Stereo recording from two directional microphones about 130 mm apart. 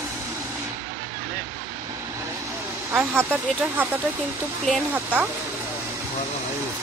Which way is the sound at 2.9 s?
15° right (ahead or behind).